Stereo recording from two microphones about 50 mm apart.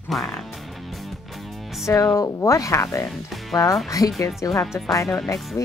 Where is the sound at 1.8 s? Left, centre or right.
Left.